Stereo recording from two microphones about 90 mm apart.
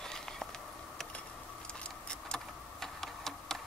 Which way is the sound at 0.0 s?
5° left (ahead or behind).